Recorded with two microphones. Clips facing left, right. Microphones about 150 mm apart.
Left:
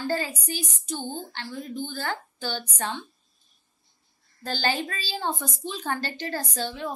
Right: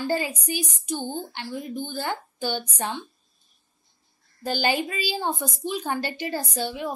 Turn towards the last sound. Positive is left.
turn(degrees=-10)  # may be behind; listen again after turning